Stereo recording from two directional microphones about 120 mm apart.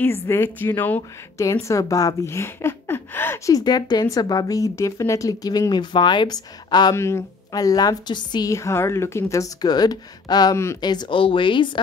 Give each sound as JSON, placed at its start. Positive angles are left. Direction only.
{"t": 0.0, "sound": "a woman's voice", "side_deg": 20}
{"t": 1.4, "sound": "speech", "side_deg": 25}
{"t": 3.5, "sound": "speech", "side_deg": 35}
{"t": 7.0, "sound": "speech", "side_deg": 25}
{"t": 8.5, "sound": "speech", "side_deg": 25}